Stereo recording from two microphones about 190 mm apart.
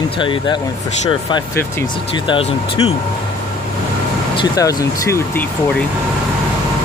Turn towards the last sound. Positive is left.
turn(degrees=10)  # may be behind; listen again after turning